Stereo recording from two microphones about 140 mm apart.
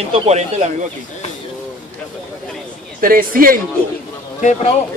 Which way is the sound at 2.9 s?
90° right.